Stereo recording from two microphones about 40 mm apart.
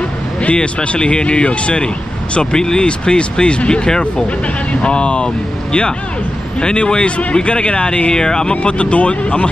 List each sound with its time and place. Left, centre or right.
0.4 s speech: left
2.5 s speech: centre